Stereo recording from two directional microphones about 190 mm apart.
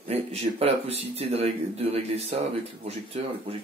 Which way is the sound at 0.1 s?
35° right (ahead or behind).